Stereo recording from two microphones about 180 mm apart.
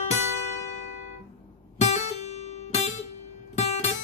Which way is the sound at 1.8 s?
40° left (ahead or behind).